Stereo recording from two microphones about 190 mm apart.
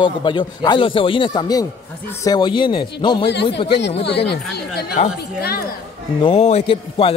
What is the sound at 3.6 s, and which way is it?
Speech, 65° left (ahead or behind).